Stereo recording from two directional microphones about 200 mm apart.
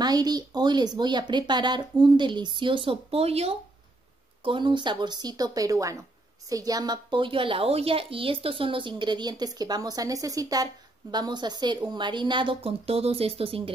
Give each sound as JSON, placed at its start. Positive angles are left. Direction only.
{"t": 0.0, "sound": "a woman's voice", "side_deg": -20}